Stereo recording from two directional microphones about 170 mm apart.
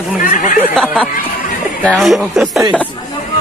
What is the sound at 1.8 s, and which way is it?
Speech, centre (ahead or behind).